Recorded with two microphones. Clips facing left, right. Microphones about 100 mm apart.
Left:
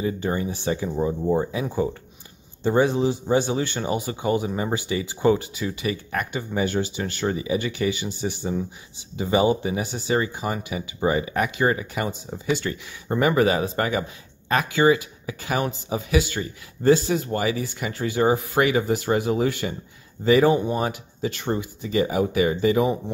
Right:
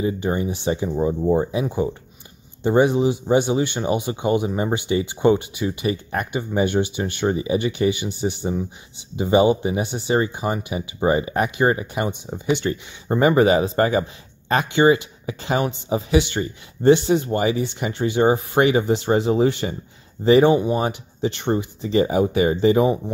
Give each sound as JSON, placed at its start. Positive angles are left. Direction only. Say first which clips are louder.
{"t": 0.0, "sound": "speech", "louder": "right 3 dB", "side_deg": -20}